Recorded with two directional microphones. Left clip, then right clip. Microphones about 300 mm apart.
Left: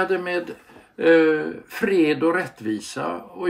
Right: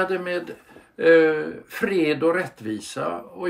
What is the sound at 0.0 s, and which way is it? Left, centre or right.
Speech, centre.